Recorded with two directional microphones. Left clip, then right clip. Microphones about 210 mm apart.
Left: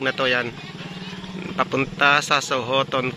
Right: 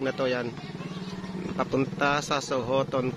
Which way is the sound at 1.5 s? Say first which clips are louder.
Left 6 dB; centre (ahead or behind).